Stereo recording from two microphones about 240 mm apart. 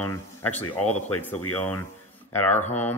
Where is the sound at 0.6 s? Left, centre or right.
Left.